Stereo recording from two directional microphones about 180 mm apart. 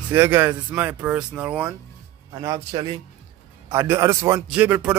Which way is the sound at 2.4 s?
20° right (ahead or behind).